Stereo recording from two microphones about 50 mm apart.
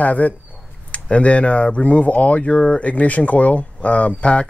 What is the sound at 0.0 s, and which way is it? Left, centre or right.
Speech, left.